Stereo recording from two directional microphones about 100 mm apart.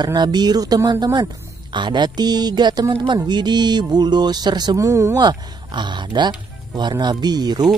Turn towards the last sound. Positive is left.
turn(degrees=-45)  # may be behind; listen again after turning